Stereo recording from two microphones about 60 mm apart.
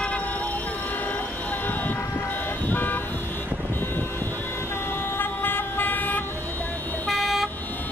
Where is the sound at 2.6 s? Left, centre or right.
Left.